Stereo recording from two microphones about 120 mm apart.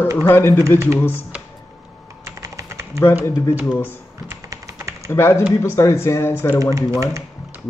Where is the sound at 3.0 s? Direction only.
20° left (ahead or behind).